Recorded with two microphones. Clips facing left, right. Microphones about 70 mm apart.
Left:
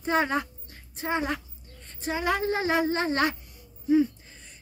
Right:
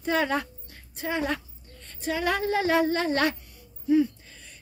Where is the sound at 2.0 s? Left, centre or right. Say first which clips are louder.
Even; left.